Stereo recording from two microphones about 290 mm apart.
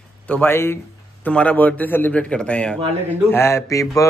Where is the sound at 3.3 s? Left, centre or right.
Centre.